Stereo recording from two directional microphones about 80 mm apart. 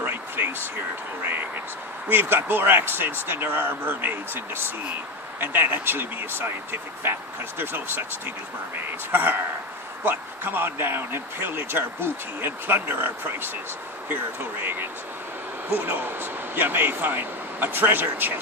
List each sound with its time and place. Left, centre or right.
0.0 s a sound: right
1.2 s speech: right
9.1 s speech: right